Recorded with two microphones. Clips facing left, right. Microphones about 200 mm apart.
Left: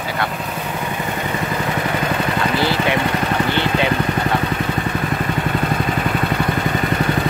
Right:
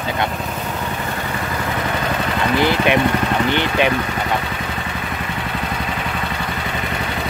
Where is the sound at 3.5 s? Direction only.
20° right (ahead or behind).